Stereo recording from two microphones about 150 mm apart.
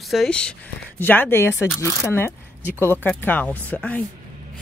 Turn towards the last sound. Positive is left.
turn(degrees=10)  # may be behind; listen again after turning